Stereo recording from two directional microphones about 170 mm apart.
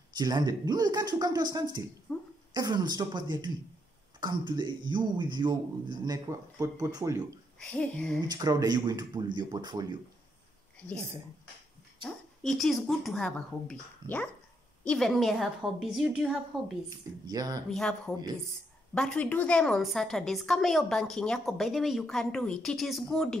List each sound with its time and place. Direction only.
0.1 s a man's voice: 25° right (ahead or behind)
2.1 s speech: 5° left (ahead or behind)
2.5 s a man's voice: 25° right (ahead or behind)
7.5 s a woman's voice: 5° left (ahead or behind)
8.3 s a man's voice: 25° right (ahead or behind)
12.0 s a woman's voice: centre (ahead or behind)
17.3 s a man's voice: 20° right (ahead or behind)
17.6 s a woman's voice: 5° left (ahead or behind)